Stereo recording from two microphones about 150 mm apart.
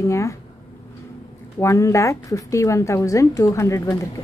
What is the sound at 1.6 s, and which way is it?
A woman's voice, 20° left (ahead or behind).